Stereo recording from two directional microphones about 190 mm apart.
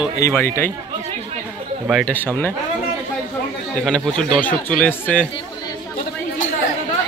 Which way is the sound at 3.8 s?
5° left (ahead or behind).